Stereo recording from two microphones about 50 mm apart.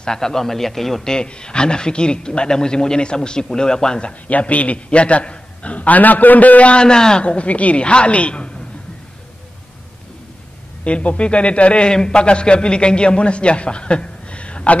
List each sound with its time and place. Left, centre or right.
0.0 s a man's voice: centre
1.1 s a man's voice: centre
4.3 s a man's voice: left
6.8 s a man's voice: centre
10.8 s a man's voice: left